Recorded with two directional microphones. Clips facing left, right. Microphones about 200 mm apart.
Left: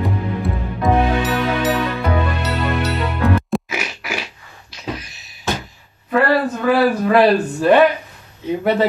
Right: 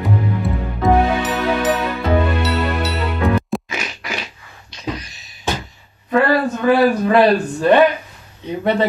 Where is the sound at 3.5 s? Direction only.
5° left (ahead or behind).